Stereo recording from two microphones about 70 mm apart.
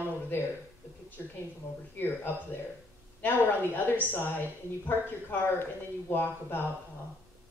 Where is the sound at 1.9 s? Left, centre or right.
Left.